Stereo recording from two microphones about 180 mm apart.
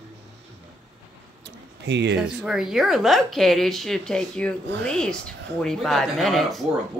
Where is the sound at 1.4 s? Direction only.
75° right (ahead or behind).